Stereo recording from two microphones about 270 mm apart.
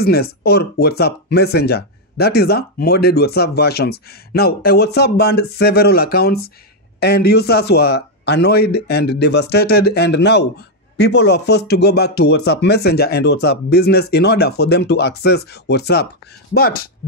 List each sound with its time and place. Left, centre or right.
0.0 s speech: left